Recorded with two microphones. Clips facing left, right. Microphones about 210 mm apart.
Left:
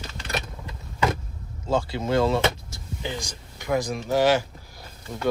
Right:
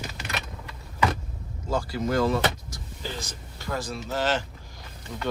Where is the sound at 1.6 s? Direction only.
25° left (ahead or behind).